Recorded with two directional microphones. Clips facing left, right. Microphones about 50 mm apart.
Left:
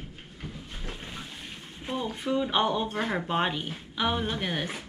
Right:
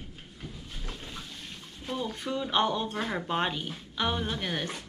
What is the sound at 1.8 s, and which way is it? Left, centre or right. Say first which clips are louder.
Speech: left 3 dB; centre.